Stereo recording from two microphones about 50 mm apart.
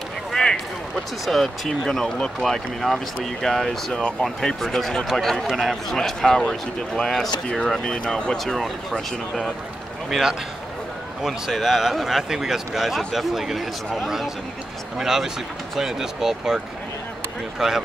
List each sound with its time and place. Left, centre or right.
0.3 s a sound: centre
1.2 s a man's voice: centre
7.8 s a man's voice: left
10.0 s a man's voice: centre